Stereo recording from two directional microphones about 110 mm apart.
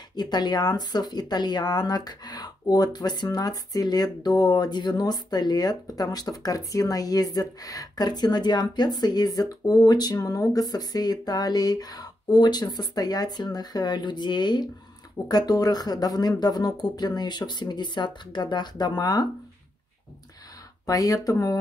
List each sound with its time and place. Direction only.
0.1 s speech: 40° left (ahead or behind)
20.8 s speech: 35° left (ahead or behind)